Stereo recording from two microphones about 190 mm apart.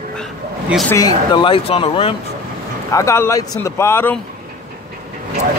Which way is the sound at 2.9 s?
15° left (ahead or behind).